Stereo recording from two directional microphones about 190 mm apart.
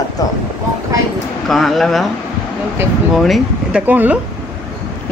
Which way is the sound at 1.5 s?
Centre (ahead or behind).